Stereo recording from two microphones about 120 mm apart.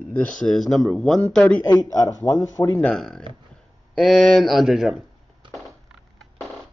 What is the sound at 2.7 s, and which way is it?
Speech, 5° left (ahead or behind).